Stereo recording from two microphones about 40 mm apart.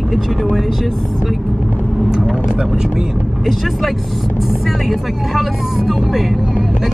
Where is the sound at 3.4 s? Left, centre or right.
Centre.